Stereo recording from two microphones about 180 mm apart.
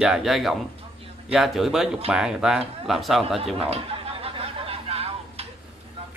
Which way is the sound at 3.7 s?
30° right (ahead or behind).